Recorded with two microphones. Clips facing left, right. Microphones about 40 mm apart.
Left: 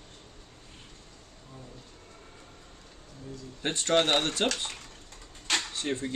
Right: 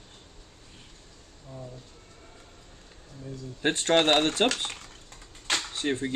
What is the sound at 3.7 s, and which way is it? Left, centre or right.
Speech, right.